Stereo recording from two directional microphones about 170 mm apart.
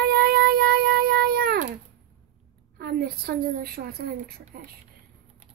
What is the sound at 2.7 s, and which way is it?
A child's voice, 65° right (ahead or behind).